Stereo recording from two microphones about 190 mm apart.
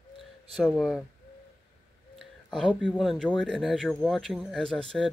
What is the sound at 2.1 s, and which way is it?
Speech, 5° left (ahead or behind).